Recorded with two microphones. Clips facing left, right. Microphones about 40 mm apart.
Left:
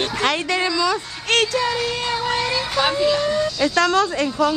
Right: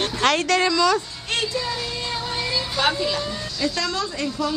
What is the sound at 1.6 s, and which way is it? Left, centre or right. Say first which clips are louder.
Child singing: left 6 dB; left.